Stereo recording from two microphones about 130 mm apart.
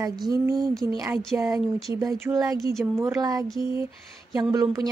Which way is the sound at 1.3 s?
20° right (ahead or behind).